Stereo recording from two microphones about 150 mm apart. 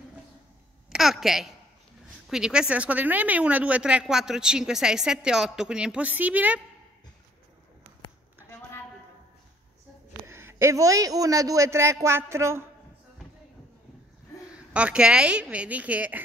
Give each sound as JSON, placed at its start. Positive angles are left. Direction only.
{"t": 0.8, "sound": "a woman's voice", "side_deg": 0}
{"t": 10.2, "sound": "a man's voice", "side_deg": -15}
{"t": 14.7, "sound": "a woman's voice", "side_deg": -10}